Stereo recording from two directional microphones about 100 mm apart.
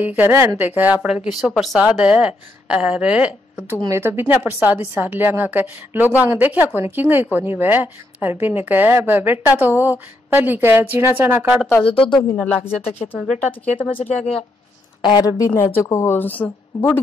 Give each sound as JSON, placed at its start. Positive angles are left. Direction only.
{"t": 0.0, "sound": "a woman's voice", "side_deg": -20}
{"t": 1.0, "sound": "speech", "side_deg": -5}
{"t": 1.8, "sound": "speech", "side_deg": -10}
{"t": 3.9, "sound": "a woman's voice", "side_deg": -25}
{"t": 11.8, "sound": "speech", "side_deg": 65}
{"t": 12.4, "sound": "speech", "side_deg": 15}
{"t": 13.7, "sound": "speech", "side_deg": 60}
{"t": 15.0, "sound": "a woman's voice", "side_deg": 50}
{"t": 15.2, "sound": "a woman's voice", "side_deg": 35}